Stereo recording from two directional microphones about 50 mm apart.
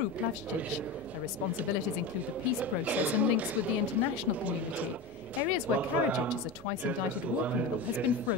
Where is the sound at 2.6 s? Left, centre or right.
Right.